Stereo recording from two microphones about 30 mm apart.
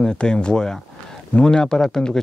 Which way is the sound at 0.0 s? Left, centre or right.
Left.